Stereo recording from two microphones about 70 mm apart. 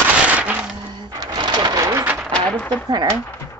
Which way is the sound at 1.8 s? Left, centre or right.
Right.